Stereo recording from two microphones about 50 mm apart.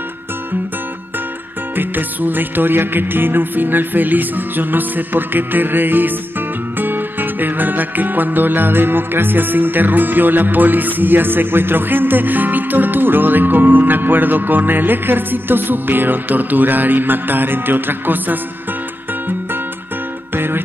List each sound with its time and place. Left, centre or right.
1.8 s music: right
20.3 s music: right